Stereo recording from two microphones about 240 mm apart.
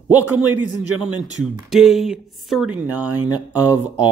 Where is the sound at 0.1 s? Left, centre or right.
Centre.